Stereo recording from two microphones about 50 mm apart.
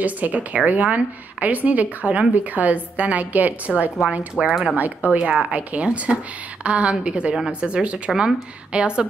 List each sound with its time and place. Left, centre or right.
0.0 s a woman's voice: right
4.5 s speech: centre
4.7 s speech: right
5.2 s a woman's voice: centre